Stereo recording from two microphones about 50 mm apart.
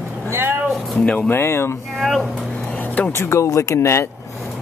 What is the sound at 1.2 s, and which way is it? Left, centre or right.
Speech, left.